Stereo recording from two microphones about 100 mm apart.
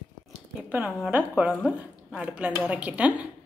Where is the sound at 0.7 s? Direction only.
15° right (ahead or behind).